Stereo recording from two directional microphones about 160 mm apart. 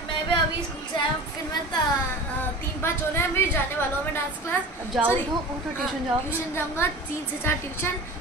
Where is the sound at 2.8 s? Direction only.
15° left (ahead or behind).